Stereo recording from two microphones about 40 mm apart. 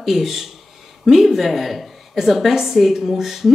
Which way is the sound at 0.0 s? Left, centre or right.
Centre.